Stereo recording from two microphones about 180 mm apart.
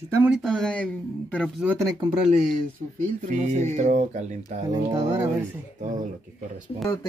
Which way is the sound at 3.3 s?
45° right (ahead or behind).